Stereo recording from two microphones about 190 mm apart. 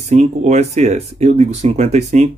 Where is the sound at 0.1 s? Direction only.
35° right (ahead or behind).